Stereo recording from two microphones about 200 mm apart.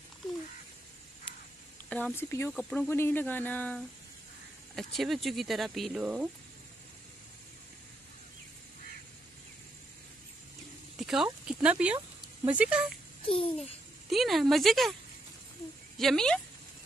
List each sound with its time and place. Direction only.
1.9 s speech: 5° left (ahead or behind)
11.0 s a sound: centre (ahead or behind)
11.4 s speech: 5° right (ahead or behind)
13.3 s babbling: 30° left (ahead or behind)
14.1 s speech: centre (ahead or behind)
16.0 s speech: centre (ahead or behind)